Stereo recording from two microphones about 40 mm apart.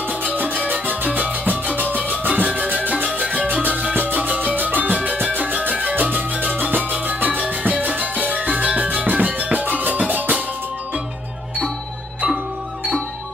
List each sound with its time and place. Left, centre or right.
0.2 s music: right
3.1 s music: right